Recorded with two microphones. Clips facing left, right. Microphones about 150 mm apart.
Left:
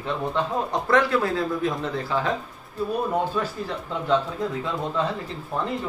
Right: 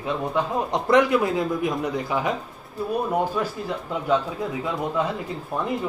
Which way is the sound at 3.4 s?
10° right (ahead or behind).